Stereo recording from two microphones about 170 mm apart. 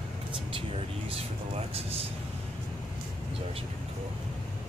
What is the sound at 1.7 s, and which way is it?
Vehicle, 35° right (ahead or behind).